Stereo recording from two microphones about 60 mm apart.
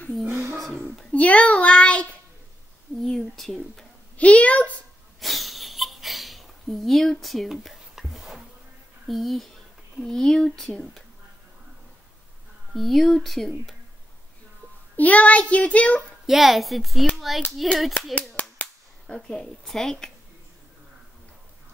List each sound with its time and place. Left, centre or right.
0.3 s a sound: right
0.6 s speech: centre
1.1 s child singing: left
3.0 s a child's voice: centre
4.2 s child singing: left
5.2 s a sound: centre
9.0 s a child's voice: centre
12.7 s a child's voice: centre
15.0 s child singing: left
16.3 s a child's voice: centre
18.1 s cap gun: left; by 20.1 s centre